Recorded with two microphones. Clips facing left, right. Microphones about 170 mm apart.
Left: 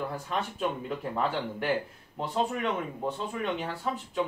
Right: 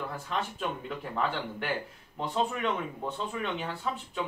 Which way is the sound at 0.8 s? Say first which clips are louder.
Left 2 dB; 5° left (ahead or behind).